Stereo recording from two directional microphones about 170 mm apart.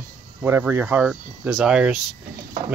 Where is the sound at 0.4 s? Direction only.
10° right (ahead or behind).